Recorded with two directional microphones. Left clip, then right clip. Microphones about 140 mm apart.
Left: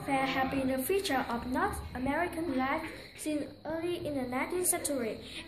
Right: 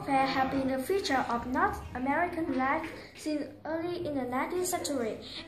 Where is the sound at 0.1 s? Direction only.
15° left (ahead or behind).